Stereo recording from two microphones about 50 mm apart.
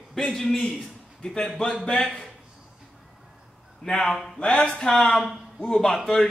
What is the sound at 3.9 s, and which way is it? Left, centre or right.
A man's voice, centre.